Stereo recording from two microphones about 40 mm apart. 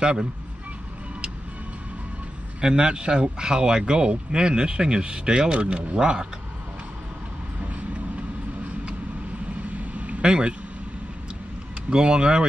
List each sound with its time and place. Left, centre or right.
0.0 s speech: centre
2.6 s speech: right
9.7 s vehicle: right
10.2 s speech: right
11.9 s speech: right